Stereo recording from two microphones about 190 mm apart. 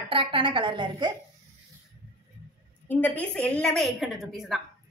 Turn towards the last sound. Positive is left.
turn(degrees=0)  # may be behind; listen again after turning